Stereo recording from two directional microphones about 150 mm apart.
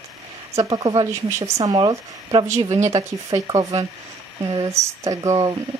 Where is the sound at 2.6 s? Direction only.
50° right (ahead or behind).